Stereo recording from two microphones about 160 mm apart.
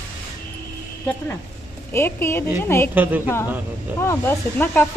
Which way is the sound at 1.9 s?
15° left (ahead or behind).